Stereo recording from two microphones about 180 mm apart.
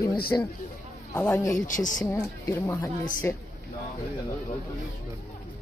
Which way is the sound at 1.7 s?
45° left (ahead or behind).